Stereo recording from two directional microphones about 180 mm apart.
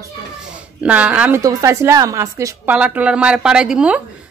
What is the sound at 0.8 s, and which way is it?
A woman's voice, 5° right (ahead or behind).